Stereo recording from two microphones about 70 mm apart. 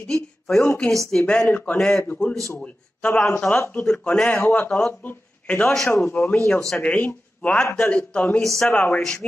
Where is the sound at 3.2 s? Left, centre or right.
Centre.